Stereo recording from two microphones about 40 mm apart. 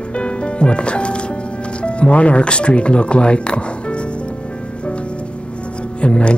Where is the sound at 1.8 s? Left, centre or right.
Left.